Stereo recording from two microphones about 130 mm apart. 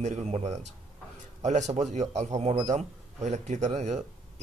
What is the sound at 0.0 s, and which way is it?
Speech, 60° right (ahead or behind).